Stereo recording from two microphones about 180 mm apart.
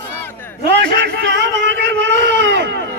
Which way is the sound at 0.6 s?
70° right (ahead or behind).